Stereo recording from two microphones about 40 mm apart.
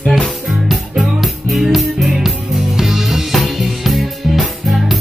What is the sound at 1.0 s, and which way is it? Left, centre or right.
Music, centre.